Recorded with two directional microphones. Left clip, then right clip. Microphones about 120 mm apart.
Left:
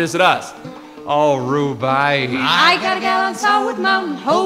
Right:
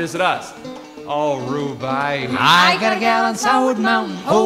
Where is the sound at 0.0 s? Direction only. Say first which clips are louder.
Left 4 dB; 40° left (ahead or behind).